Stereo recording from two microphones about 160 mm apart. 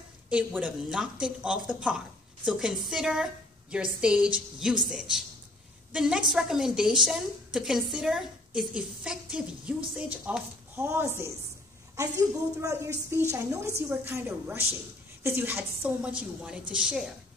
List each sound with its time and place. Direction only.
0.3 s a woman's voice: 10° right (ahead or behind)